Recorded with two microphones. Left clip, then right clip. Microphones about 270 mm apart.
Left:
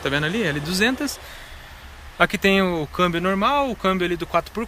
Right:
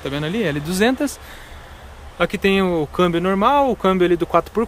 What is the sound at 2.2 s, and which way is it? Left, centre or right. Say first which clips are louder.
Speech: even; centre.